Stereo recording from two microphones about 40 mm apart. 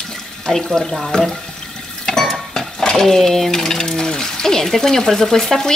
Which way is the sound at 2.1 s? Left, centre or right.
Centre.